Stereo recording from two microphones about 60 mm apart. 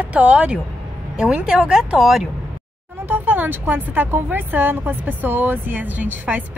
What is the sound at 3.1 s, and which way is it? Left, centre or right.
A woman's voice, right.